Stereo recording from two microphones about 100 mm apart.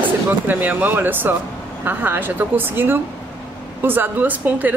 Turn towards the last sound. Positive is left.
turn(degrees=-20)  # may be behind; listen again after turning